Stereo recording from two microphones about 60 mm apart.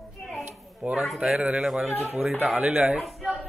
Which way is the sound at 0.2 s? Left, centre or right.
Centre.